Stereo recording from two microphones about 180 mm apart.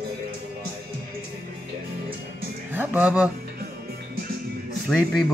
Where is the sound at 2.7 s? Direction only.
10° right (ahead or behind).